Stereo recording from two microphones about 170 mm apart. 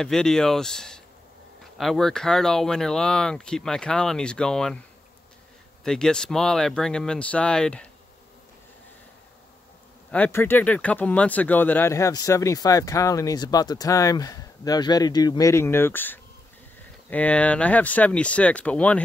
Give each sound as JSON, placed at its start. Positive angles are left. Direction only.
{"t": 0.0, "sound": "speech", "side_deg": 5}
{"t": 5.9, "sound": "speech", "side_deg": 5}
{"t": 10.1, "sound": "speech", "side_deg": 10}